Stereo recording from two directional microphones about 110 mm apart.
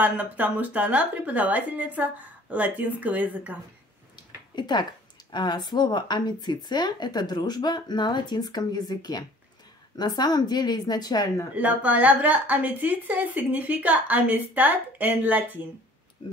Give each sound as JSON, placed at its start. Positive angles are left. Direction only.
{"t": 0.0, "sound": "a woman's voice", "side_deg": -15}
{"t": 4.6, "sound": "speech", "side_deg": 40}
{"t": 11.5, "sound": "a woman's voice", "side_deg": -15}